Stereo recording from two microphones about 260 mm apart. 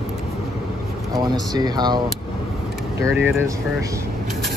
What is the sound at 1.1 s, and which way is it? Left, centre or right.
Speech, centre.